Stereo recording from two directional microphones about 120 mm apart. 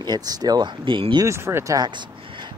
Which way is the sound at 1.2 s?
20° right (ahead or behind).